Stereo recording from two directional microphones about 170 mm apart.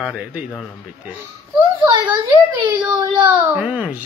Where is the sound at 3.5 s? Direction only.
10° right (ahead or behind).